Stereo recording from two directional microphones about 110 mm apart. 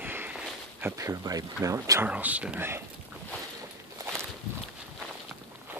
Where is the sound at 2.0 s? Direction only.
15° right (ahead or behind).